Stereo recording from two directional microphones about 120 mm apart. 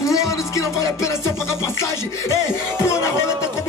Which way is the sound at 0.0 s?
25° left (ahead or behind).